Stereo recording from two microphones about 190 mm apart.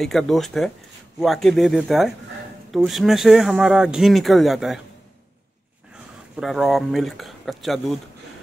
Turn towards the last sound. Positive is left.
turn(degrees=0)  # may be behind; listen again after turning